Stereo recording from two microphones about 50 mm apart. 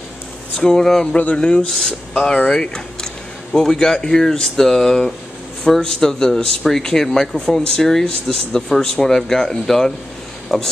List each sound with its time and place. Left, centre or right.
0.6 s speech: centre
1.7 s speech: centre
2.2 s a man's voice: centre